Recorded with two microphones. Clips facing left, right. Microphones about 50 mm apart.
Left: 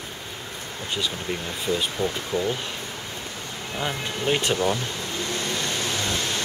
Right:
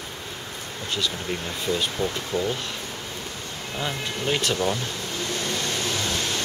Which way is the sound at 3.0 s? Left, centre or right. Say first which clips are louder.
Even; centre.